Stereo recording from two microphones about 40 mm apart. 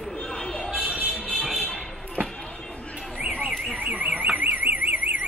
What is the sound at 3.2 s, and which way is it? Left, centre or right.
Alarm, right.